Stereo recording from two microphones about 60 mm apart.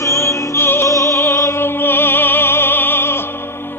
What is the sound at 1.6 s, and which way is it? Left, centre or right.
Opera, left.